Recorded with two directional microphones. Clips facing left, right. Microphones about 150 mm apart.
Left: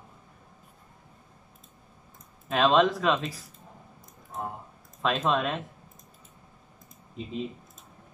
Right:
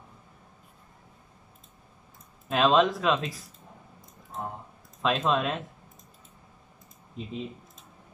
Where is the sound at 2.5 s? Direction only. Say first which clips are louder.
Even; centre (ahead or behind).